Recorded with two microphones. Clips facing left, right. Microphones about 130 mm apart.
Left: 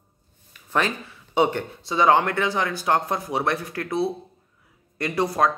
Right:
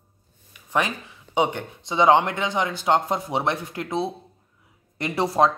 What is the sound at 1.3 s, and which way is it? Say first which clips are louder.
Speech: left 2 dB; 15° right (ahead or behind).